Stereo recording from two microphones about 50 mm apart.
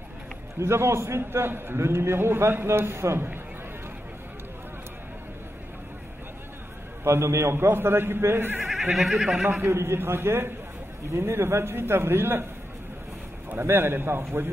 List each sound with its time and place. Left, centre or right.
0.6 s a man's voice: right
1.8 s a man's voice: right
7.1 s speech: right
8.9 s speech: centre
9.2 s speech: centre
9.7 s speech: right
13.6 s speech: right